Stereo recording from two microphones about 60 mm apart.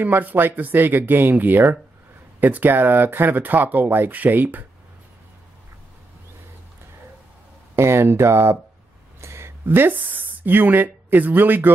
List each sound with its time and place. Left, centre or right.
0.0 s speech: right
7.7 s speech: right
9.2 s a sound: right
9.7 s speech: right